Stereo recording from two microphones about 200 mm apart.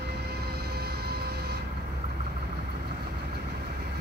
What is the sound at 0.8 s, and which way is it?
Train, 50° right (ahead or behind).